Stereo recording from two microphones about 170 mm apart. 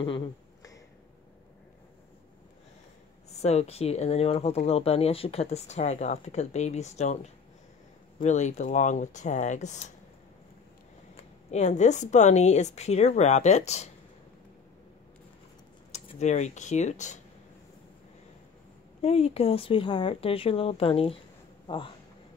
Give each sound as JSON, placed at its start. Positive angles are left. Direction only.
{"t": 0.0, "sound": "a sound", "side_deg": 25}
{"t": 3.3, "sound": "speech", "side_deg": 40}
{"t": 8.2, "sound": "speech", "side_deg": 45}
{"t": 11.1, "sound": "speech", "side_deg": 45}
{"t": 15.9, "sound": "speech", "side_deg": 40}
{"t": 18.9, "sound": "speech", "side_deg": 35}